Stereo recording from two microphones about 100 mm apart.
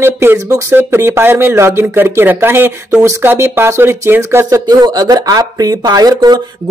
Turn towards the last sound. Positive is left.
turn(degrees=-40)  # may be behind; listen again after turning